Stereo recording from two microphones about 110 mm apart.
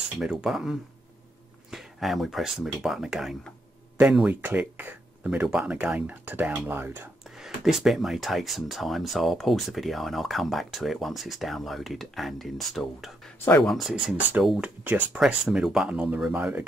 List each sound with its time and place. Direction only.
0.2 s speech: 5° right (ahead or behind)
4.4 s speech: 15° right (ahead or behind)
7.3 s speech: 5° right (ahead or behind)
14.6 s speech: 15° right (ahead or behind)